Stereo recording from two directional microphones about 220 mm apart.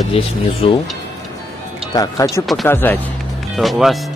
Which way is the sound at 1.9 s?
15° left (ahead or behind).